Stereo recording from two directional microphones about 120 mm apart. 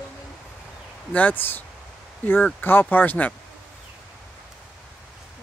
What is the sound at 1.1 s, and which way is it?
Speech, 10° left (ahead or behind).